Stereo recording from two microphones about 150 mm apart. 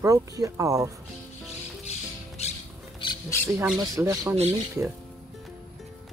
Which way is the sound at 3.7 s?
20° right (ahead or behind).